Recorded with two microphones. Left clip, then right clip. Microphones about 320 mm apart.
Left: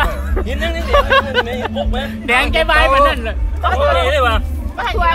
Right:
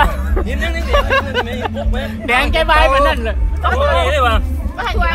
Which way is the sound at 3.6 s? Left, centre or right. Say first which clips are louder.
Left 1 dB; left.